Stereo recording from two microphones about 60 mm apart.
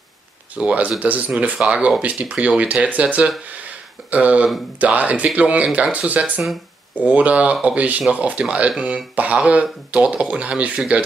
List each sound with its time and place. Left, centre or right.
0.7 s speech: right